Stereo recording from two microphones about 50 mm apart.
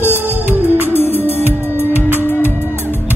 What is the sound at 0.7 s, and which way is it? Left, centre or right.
Music, left.